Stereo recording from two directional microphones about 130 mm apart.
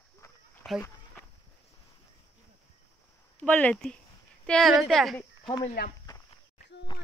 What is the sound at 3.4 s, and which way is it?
A woman's voice, 10° left (ahead or behind).